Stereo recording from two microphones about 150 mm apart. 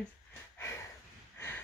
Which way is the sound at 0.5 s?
15° left (ahead or behind).